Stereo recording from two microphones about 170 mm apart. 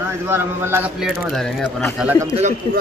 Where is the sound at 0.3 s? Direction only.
15° right (ahead or behind).